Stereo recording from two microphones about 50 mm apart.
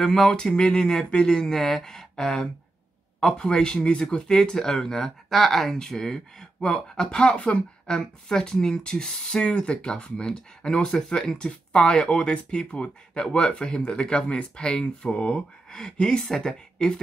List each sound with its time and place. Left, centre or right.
0.0 s speech: centre